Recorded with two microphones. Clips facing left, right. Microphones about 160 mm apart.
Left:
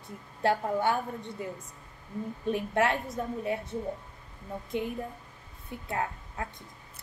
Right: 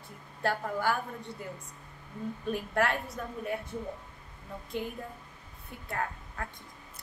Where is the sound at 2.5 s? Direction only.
25° left (ahead or behind).